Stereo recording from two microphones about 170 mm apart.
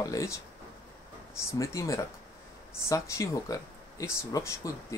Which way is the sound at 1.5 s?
20° left (ahead or behind).